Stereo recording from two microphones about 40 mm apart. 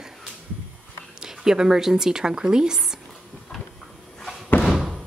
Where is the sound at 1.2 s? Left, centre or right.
Centre.